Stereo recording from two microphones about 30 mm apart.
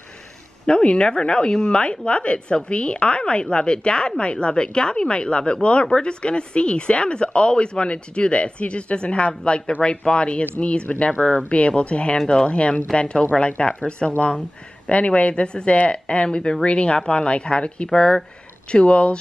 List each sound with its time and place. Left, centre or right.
0.7 s speech: left
1.8 s speech: left
12.9 s speech: left
13.3 s speech: left
13.8 s speech: left
17.9 s speech: left
18.7 s speech: left